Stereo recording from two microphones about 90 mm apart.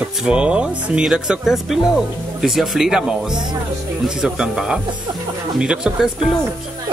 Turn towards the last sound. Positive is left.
turn(degrees=-5)  # may be behind; listen again after turning